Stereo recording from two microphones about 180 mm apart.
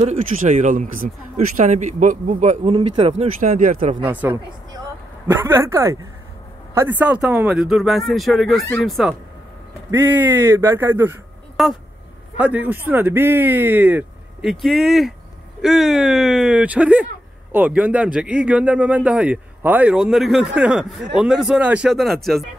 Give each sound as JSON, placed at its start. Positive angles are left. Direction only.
{"t": 0.0, "sound": "speech", "side_deg": -40}
{"t": 4.1, "sound": "speech", "side_deg": -10}
{"t": 9.8, "sound": "speech", "side_deg": -15}
{"t": 11.5, "sound": "a sound", "side_deg": 0}
{"t": 12.4, "sound": "speech", "side_deg": -10}